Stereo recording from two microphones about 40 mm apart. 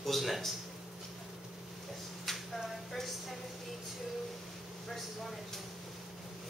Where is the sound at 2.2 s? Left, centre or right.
Centre.